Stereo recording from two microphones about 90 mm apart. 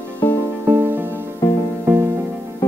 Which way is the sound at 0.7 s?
20° right (ahead or behind).